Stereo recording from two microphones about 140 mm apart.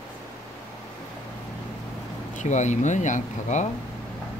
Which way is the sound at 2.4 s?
60° left (ahead or behind).